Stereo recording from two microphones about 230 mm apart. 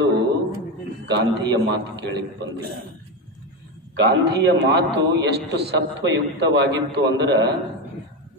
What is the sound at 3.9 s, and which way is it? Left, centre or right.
A man's voice, right.